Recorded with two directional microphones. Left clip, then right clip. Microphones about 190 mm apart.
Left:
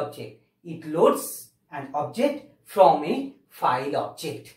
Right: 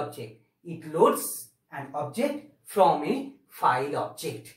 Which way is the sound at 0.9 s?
15° right (ahead or behind).